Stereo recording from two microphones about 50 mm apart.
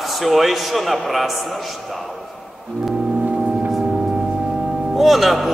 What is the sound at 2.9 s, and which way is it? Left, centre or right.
Organ, centre.